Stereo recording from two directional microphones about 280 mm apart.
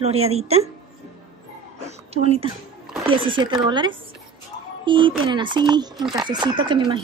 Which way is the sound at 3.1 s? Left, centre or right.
Centre.